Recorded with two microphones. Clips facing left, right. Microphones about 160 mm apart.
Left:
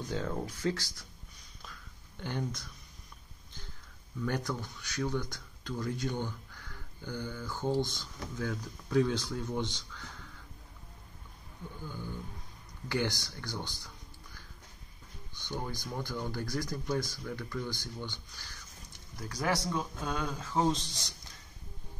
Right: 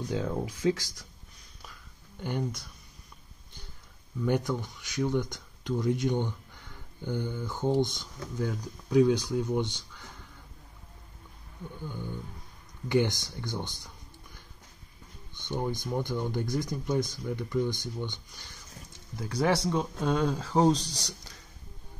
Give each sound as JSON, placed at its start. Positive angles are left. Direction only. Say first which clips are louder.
{"t": 0.1, "sound": "speech", "louder": "right 4 dB", "side_deg": -15}
{"t": 1.6, "sound": "a sound", "louder": "even", "side_deg": -10}
{"t": 4.2, "sound": "speech", "louder": "right 6 dB", "side_deg": -15}
{"t": 12.8, "sound": "speech", "louder": "right 7 dB", "side_deg": -20}
{"t": 15.3, "sound": "speech", "louder": "right 6 dB", "side_deg": -20}